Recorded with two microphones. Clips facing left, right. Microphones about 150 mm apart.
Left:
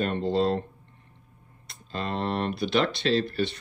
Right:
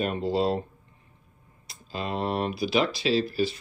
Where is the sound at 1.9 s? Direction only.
5° right (ahead or behind).